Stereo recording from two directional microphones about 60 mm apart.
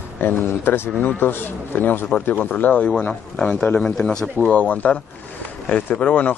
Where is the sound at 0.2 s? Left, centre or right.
Left; by 4.3 s centre.